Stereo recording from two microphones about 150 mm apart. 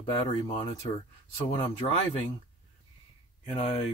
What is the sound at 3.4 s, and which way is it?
Speech, 45° left (ahead or behind).